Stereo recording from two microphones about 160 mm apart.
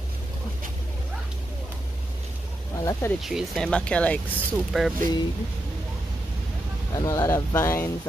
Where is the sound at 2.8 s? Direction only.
20° left (ahead or behind).